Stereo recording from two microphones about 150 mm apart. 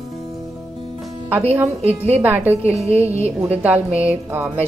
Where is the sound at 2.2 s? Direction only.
10° right (ahead or behind).